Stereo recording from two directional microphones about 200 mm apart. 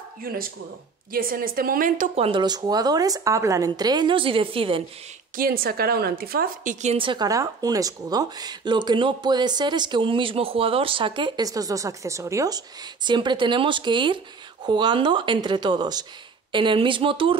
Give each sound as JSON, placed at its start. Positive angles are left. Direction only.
{"t": 1.1, "sound": "a woman's voice", "side_deg": -45}
{"t": 5.3, "sound": "a woman's voice", "side_deg": -45}